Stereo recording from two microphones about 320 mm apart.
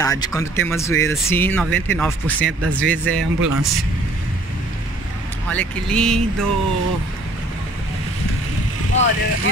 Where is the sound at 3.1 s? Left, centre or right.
Right.